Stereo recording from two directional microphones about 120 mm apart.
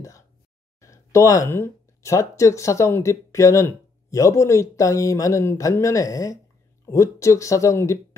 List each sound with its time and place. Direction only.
0.7 s speech: 25° left (ahead or behind)